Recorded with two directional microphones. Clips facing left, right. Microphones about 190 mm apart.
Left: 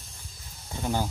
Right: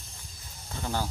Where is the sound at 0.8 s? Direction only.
15° left (ahead or behind).